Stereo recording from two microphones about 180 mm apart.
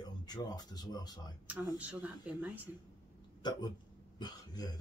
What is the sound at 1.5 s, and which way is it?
Speech, 10° right (ahead or behind).